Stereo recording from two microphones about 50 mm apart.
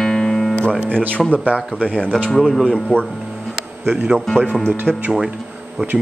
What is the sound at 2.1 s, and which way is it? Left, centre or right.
Speech, centre.